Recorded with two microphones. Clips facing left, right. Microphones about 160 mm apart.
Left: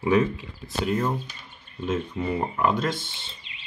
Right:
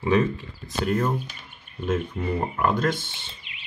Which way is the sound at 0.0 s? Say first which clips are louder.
Even; 5° left (ahead or behind).